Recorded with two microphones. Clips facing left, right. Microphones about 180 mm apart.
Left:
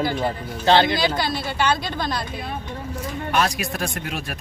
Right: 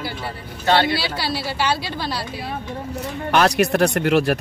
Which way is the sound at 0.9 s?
5° right (ahead or behind).